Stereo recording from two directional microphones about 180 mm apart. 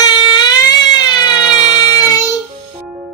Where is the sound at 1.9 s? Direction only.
20° left (ahead or behind).